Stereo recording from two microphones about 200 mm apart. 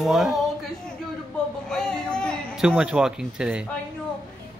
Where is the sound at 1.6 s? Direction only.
5° left (ahead or behind).